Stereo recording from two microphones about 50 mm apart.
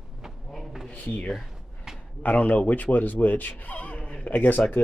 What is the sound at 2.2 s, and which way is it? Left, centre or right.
Speech, left.